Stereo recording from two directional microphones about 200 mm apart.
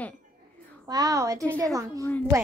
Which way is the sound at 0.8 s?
20° right (ahead or behind).